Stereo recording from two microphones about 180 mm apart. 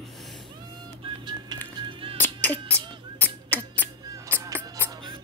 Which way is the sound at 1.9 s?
30° right (ahead or behind).